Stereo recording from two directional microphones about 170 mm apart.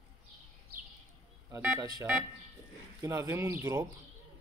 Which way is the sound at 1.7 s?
25° right (ahead or behind).